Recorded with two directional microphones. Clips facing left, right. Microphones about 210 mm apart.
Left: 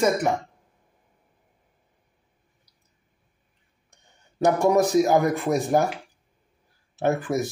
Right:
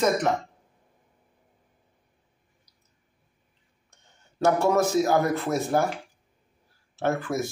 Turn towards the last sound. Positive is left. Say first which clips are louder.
# left 3 dB
turn(degrees=20)  # may be behind; listen again after turning